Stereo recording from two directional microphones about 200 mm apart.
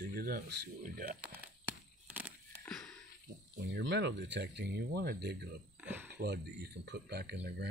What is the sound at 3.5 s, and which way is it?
Speech, 60° right (ahead or behind).